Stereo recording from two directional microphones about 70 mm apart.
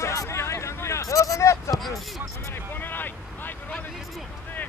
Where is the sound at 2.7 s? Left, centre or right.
Left.